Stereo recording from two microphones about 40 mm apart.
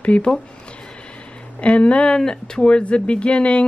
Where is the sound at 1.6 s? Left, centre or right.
Left.